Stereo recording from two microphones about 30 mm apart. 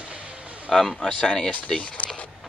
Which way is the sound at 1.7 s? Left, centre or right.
Left.